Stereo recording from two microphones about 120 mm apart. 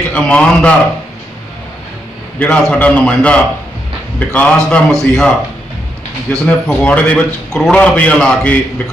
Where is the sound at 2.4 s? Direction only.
10° left (ahead or behind).